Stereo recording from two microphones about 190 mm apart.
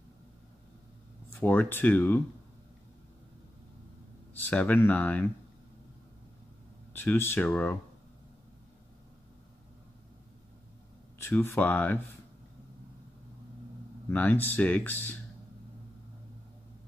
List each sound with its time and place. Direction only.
1.4 s speech: 10° left (ahead or behind)
4.3 s speech: 10° left (ahead or behind)
6.9 s speech: 10° left (ahead or behind)
11.1 s speech: 10° left (ahead or behind)
14.1 s speech: 10° left (ahead or behind)